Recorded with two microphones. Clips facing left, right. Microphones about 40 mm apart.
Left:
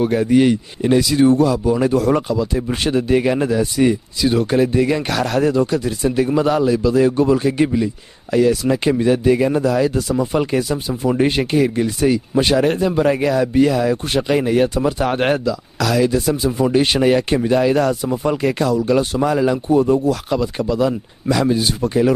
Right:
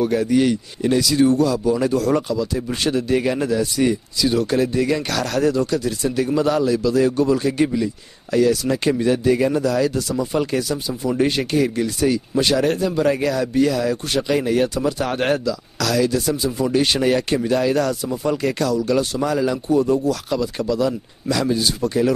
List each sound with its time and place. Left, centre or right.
0.0 s speech: left